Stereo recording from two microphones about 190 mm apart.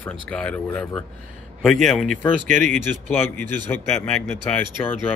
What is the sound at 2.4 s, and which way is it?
Speech, 40° right (ahead or behind).